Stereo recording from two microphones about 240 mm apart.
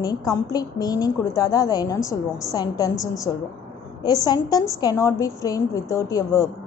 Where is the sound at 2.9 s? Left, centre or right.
Centre.